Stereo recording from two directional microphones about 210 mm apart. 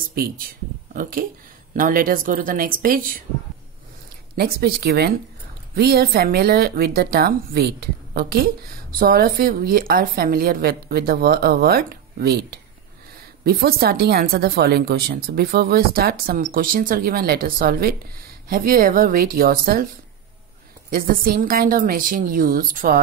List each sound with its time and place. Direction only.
0.1 s a woman's voice: 45° right (ahead or behind)
1.7 s a woman's voice: 40° right (ahead or behind)
4.4 s a woman's voice: 45° right (ahead or behind)
20.9 s a woman's voice: 45° right (ahead or behind)